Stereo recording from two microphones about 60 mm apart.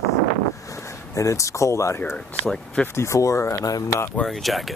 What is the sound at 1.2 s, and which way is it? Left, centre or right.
Speech, left.